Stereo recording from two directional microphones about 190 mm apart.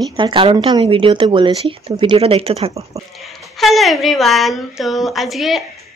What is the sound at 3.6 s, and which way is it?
Speech, centre (ahead or behind).